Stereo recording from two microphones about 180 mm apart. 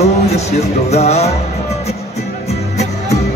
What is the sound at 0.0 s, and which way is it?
Music, 35° left (ahead or behind).